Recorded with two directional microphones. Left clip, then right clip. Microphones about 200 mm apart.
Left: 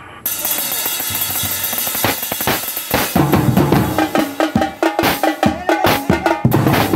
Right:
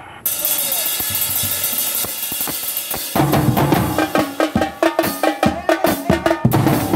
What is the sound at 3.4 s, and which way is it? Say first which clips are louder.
Music: left 1 dB; 20° right (ahead or behind).